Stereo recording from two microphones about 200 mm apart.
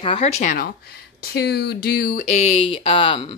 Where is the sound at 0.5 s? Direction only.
50° left (ahead or behind).